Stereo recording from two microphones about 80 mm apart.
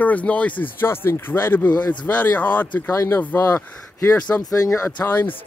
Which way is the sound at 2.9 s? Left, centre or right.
Left.